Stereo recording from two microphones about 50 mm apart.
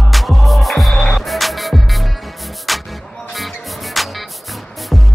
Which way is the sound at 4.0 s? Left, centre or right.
Centre.